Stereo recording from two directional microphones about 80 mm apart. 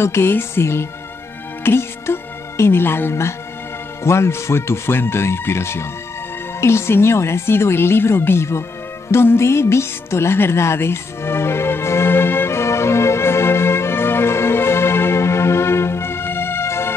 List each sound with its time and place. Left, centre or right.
0.0 s speech: left
9.1 s music: left